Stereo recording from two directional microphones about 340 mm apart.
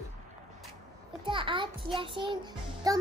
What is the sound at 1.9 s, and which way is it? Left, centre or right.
Music, centre.